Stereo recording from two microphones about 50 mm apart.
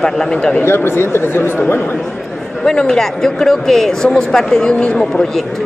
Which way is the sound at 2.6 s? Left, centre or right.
Centre.